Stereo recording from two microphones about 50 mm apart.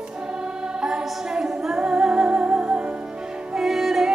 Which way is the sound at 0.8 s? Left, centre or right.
Centre.